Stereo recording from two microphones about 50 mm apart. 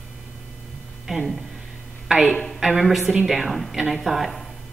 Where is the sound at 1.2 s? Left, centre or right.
Centre.